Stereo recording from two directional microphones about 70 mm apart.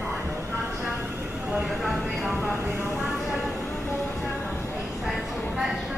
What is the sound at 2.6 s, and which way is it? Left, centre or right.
Speech, right.